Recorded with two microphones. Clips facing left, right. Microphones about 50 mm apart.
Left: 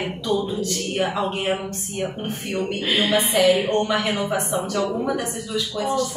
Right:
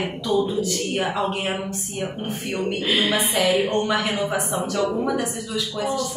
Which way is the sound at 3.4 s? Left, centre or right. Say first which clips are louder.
Left 2 dB; centre.